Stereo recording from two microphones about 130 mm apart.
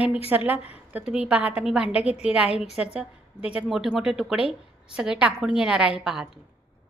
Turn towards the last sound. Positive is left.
turn(degrees=-5)  # may be behind; listen again after turning